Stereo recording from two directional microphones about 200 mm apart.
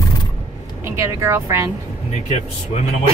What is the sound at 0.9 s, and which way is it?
Speech, 15° right (ahead or behind).